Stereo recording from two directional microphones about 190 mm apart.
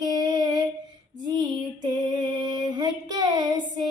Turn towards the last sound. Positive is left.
turn(degrees=-20)  # may be behind; listen again after turning